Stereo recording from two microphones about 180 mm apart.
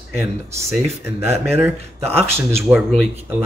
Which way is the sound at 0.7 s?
10° right (ahead or behind).